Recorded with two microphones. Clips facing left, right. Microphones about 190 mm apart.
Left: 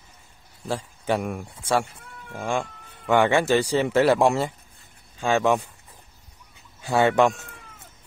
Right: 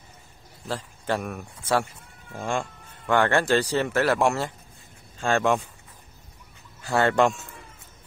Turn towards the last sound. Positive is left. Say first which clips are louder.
# left 2 dB
turn(degrees=5)  # may be behind; listen again after turning